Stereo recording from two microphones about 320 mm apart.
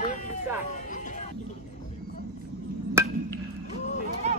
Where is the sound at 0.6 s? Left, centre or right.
Left.